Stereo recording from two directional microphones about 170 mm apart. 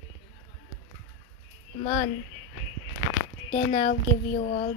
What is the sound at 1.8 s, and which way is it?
Speech, 30° left (ahead or behind).